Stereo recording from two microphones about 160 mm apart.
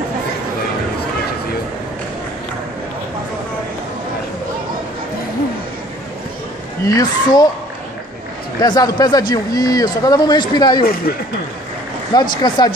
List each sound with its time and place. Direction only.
6.9 s a man's voice: 25° left (ahead or behind)
8.5 s a man's voice: 25° left (ahead or behind)
10.8 s speech: 65° left (ahead or behind)
12.1 s a man's voice: 25° left (ahead or behind)